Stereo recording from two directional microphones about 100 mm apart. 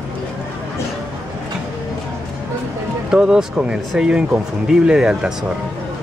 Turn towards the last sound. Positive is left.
turn(degrees=-5)  # may be behind; listen again after turning